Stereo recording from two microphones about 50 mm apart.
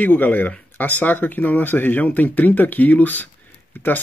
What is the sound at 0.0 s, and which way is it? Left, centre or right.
Speech, left.